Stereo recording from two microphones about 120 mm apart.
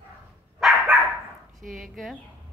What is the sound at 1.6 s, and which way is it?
Speech, 90° right.